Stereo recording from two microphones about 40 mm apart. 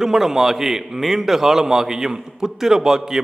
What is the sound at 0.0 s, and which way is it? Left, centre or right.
A man's voice, centre.